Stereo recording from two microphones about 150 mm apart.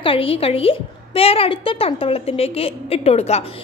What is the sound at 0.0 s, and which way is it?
A woman's voice, 40° left (ahead or behind).